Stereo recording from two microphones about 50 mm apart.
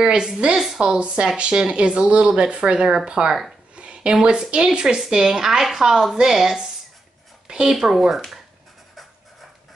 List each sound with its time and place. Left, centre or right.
0.0 s a woman's voice: centre
7.4 s a sound: centre
7.7 s speech: centre